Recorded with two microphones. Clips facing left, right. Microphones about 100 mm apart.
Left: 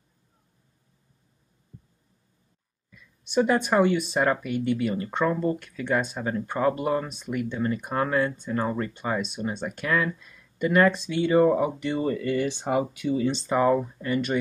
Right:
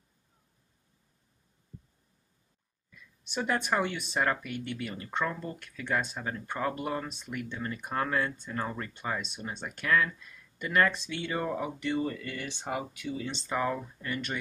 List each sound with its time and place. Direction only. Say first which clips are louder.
3.3 s speech: left 8 dB; 10° left (ahead or behind)